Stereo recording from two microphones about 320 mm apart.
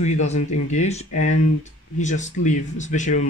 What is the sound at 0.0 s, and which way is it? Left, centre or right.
Speech, left.